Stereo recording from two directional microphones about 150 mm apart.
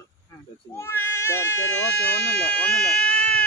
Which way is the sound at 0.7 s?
15° left (ahead or behind).